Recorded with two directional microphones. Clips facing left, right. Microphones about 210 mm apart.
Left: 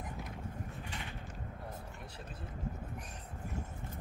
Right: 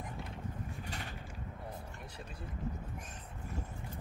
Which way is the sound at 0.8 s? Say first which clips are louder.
Right 1 dB; 40° right (ahead or behind).